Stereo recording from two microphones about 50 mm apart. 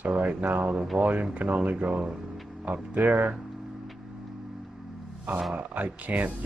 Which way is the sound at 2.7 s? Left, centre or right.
Right.